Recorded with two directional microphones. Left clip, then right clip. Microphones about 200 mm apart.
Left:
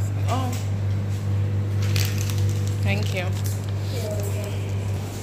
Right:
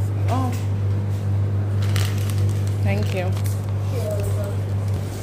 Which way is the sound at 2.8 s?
25° right (ahead or behind).